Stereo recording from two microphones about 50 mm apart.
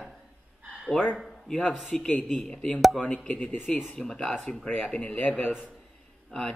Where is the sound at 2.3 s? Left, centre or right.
Centre.